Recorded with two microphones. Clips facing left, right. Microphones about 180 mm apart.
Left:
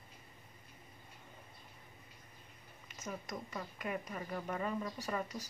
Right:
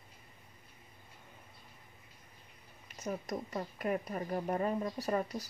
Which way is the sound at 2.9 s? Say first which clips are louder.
Right 6 dB; 35° right (ahead or behind).